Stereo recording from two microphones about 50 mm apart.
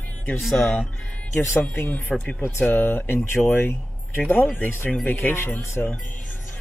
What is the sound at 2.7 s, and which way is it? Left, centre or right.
Speech, left.